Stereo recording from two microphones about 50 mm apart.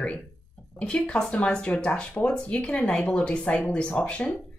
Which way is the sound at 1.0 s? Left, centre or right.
Centre.